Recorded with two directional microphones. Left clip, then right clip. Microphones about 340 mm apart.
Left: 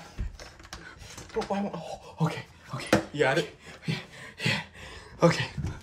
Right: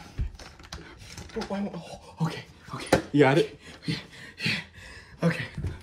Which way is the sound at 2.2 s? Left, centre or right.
Left.